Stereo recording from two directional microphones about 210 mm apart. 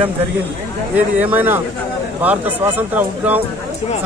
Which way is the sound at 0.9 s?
10° right (ahead or behind).